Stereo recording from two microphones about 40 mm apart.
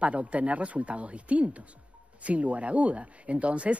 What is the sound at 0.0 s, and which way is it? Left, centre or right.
Speech, right.